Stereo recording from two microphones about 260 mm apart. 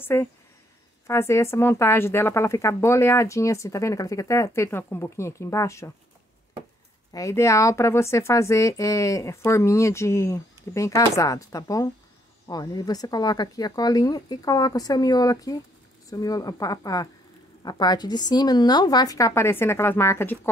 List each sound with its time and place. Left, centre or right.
0.0 s a woman's voice: centre
7.1 s a woman's voice: centre